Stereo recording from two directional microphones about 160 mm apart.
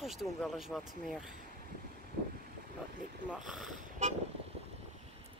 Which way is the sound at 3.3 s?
Centre (ahead or behind).